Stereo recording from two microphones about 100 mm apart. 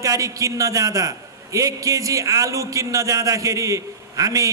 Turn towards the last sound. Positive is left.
turn(degrees=-35)  # may be behind; listen again after turning